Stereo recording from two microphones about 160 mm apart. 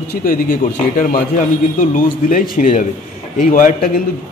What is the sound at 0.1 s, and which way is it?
A man's voice, 60° left (ahead or behind).